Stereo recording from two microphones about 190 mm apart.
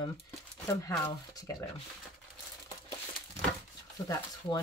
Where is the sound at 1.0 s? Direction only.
10° left (ahead or behind).